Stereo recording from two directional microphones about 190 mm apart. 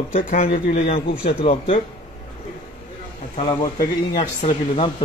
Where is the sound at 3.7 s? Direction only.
45° left (ahead or behind).